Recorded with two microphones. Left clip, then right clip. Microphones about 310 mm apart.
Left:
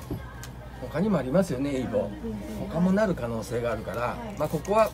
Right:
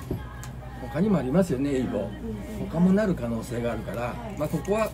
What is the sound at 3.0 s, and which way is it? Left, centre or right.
Speech, centre.